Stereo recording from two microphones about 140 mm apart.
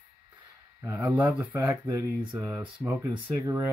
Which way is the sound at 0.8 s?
15° right (ahead or behind).